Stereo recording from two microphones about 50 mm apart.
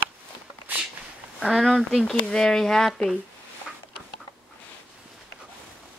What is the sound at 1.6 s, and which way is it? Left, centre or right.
Speech, centre.